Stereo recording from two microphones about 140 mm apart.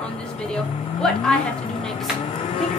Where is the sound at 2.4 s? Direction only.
55° left (ahead or behind).